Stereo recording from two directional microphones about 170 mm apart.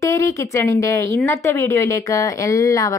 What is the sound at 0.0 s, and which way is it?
A woman's voice, 20° left (ahead or behind).